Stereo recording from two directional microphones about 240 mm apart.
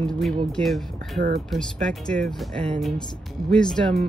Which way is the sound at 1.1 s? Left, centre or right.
Right.